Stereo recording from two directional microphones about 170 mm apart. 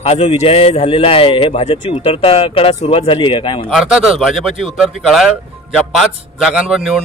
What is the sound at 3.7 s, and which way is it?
Speech, 5° right (ahead or behind).